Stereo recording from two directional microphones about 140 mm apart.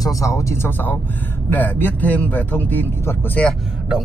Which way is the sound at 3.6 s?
5° right (ahead or behind).